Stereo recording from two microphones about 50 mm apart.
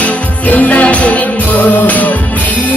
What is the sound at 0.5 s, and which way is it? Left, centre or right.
Music, left.